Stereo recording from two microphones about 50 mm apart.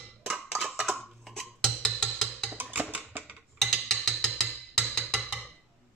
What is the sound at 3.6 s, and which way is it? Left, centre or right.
Music, centre.